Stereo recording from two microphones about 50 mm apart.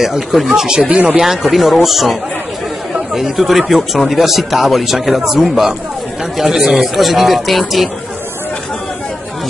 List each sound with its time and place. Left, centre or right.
0.0 s speech: centre
0.8 s speech: right
1.1 s a man's voice: centre